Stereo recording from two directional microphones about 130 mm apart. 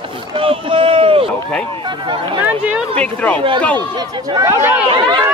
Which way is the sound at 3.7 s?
35° right (ahead or behind).